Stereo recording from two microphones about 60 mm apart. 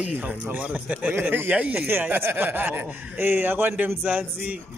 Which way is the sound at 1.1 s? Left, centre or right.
Right.